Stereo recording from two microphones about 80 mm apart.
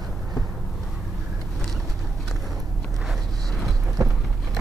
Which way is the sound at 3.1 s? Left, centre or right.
Centre.